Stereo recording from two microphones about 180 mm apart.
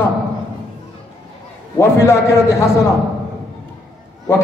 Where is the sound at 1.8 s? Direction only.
15° left (ahead or behind).